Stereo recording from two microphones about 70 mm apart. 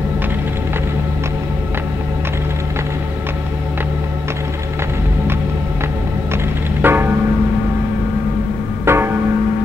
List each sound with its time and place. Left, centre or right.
6.8 s music: right
8.8 s music: right